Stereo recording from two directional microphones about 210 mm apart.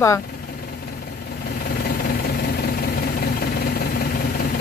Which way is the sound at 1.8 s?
45° left (ahead or behind).